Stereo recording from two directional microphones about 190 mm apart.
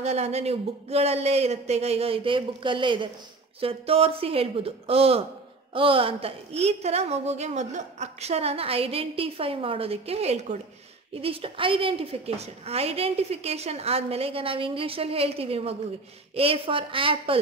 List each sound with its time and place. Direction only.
0.0 s a woman's voice: 35° right (ahead or behind)